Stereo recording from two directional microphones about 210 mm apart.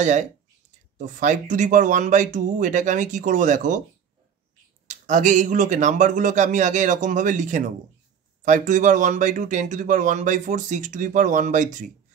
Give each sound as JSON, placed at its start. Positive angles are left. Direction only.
{"t": 0.0, "sound": "speech", "side_deg": -35}
{"t": 4.8, "sound": "speech", "side_deg": -35}